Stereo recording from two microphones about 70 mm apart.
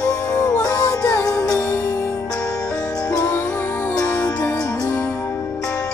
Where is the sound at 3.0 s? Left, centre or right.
Left.